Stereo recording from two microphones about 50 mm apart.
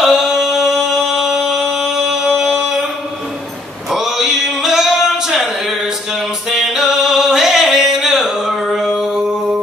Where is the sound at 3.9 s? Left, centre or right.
Centre.